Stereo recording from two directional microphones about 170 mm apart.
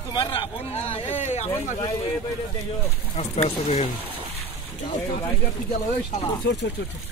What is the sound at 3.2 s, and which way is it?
Speech, 40° left (ahead or behind).